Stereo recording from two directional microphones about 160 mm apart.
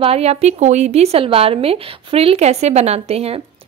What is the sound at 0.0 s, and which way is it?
A woman's voice, 40° right (ahead or behind).